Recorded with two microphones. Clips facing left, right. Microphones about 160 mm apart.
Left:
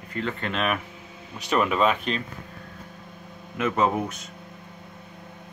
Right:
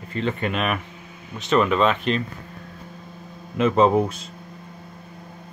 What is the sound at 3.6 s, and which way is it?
Speech, 30° right (ahead or behind).